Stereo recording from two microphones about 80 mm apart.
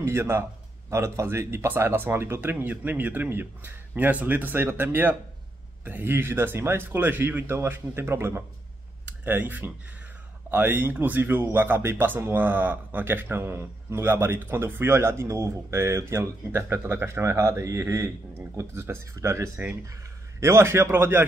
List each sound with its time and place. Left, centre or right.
0.0 s speech: right
9.0 s speech: right